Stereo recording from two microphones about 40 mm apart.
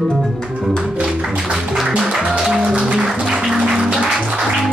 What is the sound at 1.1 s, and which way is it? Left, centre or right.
Music, centre.